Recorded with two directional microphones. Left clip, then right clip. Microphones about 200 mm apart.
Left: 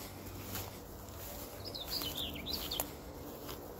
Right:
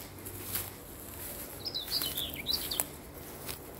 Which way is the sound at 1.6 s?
55° left (ahead or behind).